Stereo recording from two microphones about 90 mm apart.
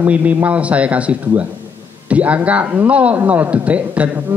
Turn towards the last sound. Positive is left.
turn(degrees=-15)  # may be behind; listen again after turning